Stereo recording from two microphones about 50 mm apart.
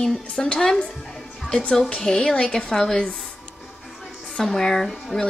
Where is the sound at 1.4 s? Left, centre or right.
Left.